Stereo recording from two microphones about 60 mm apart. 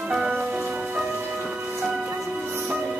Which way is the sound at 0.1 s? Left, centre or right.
Centre.